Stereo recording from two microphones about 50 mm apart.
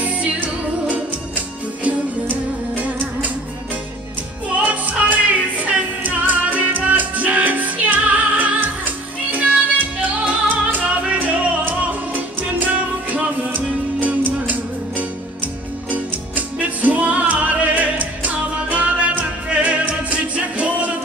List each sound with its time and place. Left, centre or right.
0.0 s music: right
4.6 s music: right
15.9 s music: right